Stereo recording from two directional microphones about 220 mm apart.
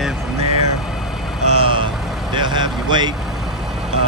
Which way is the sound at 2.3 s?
20° right (ahead or behind).